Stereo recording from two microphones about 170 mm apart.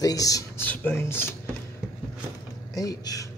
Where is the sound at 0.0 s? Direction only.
20° left (ahead or behind).